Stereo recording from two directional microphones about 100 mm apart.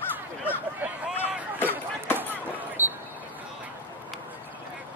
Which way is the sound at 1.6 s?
20° left (ahead or behind).